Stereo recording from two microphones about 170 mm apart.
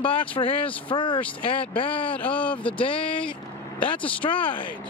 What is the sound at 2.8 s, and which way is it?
Speech, 30° left (ahead or behind).